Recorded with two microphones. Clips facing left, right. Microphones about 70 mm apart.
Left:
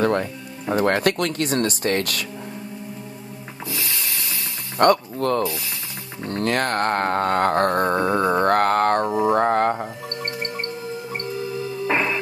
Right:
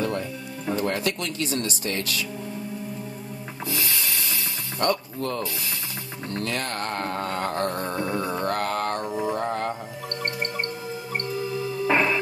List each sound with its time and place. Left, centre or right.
0.0 s speech: left
4.7 s speech: left
9.3 s mantra: left
11.9 s music: centre